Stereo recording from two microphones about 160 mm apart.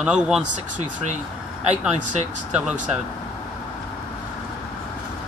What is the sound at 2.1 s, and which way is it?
Speech, 50° right (ahead or behind).